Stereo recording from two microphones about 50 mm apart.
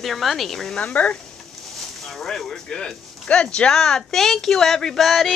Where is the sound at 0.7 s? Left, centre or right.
Left.